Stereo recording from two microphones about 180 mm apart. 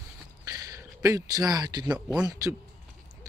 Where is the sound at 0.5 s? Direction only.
20° right (ahead or behind).